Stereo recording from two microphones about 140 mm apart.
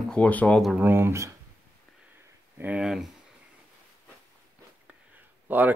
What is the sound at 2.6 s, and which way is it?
Speech, 5° right (ahead or behind).